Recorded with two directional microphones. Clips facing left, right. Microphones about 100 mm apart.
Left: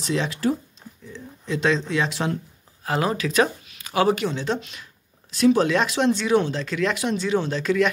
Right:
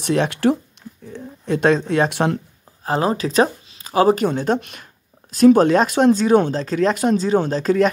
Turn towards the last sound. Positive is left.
turn(degrees=-40)  # may be behind; listen again after turning